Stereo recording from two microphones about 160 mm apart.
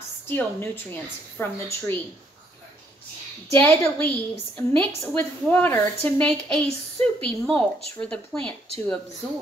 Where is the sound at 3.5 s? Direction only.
15° left (ahead or behind).